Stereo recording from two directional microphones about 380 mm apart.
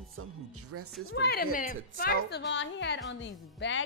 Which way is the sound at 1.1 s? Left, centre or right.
Left.